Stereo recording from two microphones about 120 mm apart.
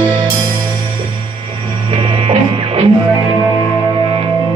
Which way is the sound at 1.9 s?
55° right (ahead or behind).